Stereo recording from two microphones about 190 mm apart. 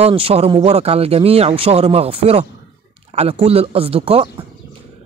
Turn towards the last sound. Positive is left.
turn(degrees=-30)  # may be behind; listen again after turning